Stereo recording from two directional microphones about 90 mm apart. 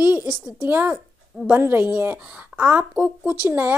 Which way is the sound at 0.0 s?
20° right (ahead or behind).